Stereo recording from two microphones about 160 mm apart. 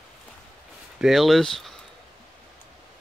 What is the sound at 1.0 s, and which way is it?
Speech, centre (ahead or behind).